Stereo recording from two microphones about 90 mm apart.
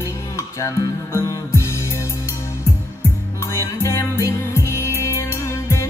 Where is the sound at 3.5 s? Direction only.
35° left (ahead or behind).